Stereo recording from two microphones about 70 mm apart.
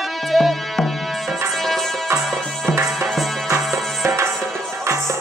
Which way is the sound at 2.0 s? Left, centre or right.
Right.